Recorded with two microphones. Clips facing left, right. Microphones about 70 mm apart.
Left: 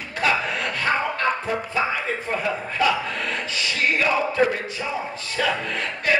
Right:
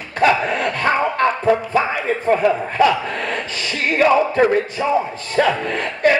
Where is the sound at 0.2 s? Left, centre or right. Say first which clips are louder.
Right 7 dB; right.